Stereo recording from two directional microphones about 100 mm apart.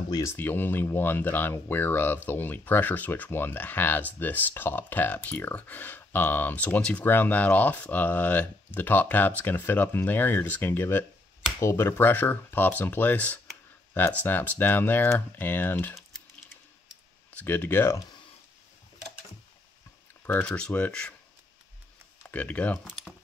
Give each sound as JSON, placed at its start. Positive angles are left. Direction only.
{"t": 0.1, "sound": "speech", "side_deg": 30}
{"t": 0.4, "sound": "speech", "side_deg": 20}
{"t": 17.3, "sound": "speech", "side_deg": 15}
{"t": 20.4, "sound": "speech", "side_deg": 10}
{"t": 22.2, "sound": "speech", "side_deg": 15}